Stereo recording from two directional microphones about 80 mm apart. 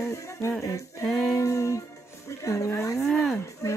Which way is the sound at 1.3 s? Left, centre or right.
Left.